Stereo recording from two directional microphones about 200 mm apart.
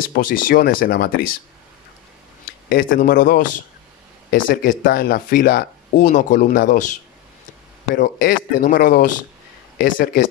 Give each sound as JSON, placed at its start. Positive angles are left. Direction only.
{"t": 0.1, "sound": "speech", "side_deg": 45}
{"t": 2.7, "sound": "speech", "side_deg": 45}
{"t": 7.9, "sound": "speech", "side_deg": 40}